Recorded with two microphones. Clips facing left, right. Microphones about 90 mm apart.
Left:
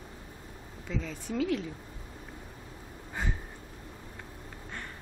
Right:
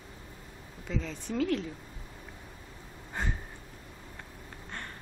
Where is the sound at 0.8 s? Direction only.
5° left (ahead or behind).